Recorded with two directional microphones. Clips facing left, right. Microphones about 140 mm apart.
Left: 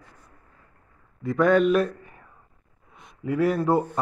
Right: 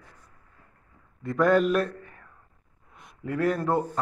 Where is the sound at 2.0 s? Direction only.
10° left (ahead or behind).